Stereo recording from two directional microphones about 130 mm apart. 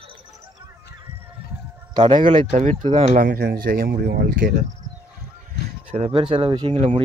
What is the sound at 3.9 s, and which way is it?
Speech, 90° right.